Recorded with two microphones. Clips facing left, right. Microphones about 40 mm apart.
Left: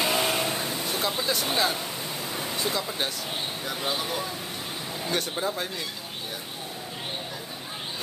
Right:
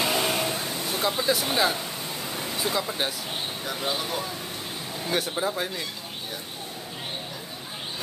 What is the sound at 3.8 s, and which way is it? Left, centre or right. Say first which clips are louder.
Speech: even; centre.